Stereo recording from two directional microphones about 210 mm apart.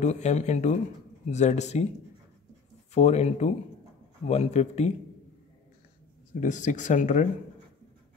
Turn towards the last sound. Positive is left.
turn(degrees=35)  # may be behind; listen again after turning